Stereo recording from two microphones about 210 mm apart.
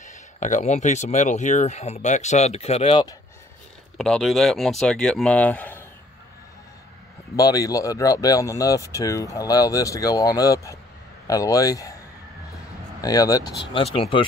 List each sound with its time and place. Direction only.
0.0 s speech: 35° left (ahead or behind)
4.0 s speech: centre (ahead or behind)
7.3 s speech: 15° left (ahead or behind)
13.0 s speech: 15° left (ahead or behind)